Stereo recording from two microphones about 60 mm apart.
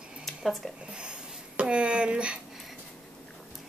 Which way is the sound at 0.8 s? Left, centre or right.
Centre.